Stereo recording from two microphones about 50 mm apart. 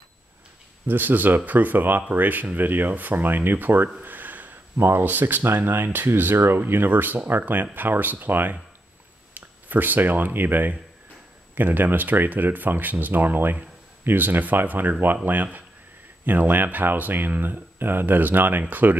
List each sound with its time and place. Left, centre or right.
0.8 s speech: right
4.0 s a sound: right
4.7 s speech: right
5.0 s speech: right
6.6 s speech: right